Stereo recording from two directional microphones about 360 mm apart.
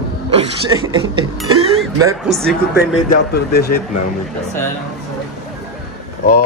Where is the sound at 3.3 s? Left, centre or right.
Left.